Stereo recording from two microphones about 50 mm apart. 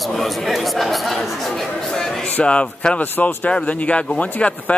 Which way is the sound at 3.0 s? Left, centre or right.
Left.